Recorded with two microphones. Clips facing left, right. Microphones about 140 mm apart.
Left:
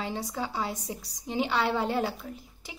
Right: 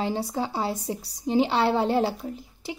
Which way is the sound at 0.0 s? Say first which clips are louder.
Right 6 dB; 30° right (ahead or behind).